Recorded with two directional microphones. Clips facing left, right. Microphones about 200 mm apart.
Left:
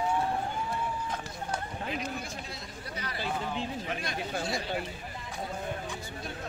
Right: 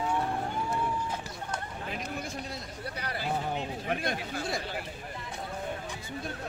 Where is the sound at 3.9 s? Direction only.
55° right (ahead or behind).